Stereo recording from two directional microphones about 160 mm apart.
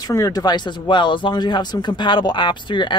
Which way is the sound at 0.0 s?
20° left (ahead or behind).